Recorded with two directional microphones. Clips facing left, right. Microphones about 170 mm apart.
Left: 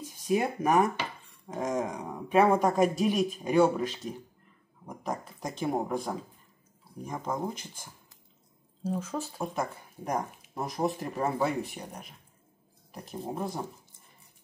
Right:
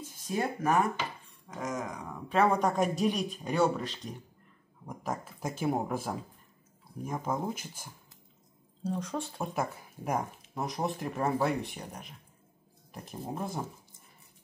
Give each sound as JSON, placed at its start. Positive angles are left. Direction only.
{"t": 0.3, "sound": "speech", "side_deg": 15}
{"t": 1.5, "sound": "a sound", "side_deg": 30}
{"t": 2.2, "sound": "speech", "side_deg": 10}
{"t": 4.8, "sound": "speech", "side_deg": -5}
{"t": 8.8, "sound": "speech", "side_deg": 5}